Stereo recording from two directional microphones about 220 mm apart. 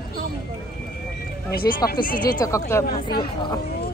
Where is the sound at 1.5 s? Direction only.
45° left (ahead or behind).